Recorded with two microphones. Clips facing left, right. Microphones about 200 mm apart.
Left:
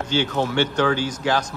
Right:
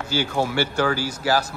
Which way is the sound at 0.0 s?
10° right (ahead or behind).